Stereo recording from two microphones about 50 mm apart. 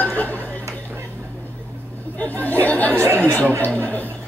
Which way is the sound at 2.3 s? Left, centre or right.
Left.